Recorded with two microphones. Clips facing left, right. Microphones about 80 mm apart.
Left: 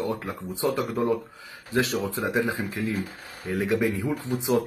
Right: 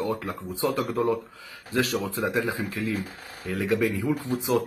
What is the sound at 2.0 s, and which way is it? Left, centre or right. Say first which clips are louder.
Speech: left 1 dB; left.